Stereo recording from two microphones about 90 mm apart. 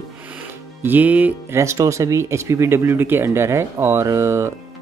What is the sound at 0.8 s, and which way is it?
Speech, 20° right (ahead or behind).